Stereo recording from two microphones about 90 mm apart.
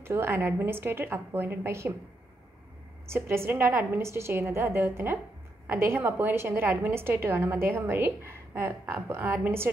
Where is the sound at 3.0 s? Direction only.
30° right (ahead or behind).